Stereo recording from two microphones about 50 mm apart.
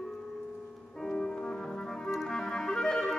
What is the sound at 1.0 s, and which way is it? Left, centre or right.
Music, centre.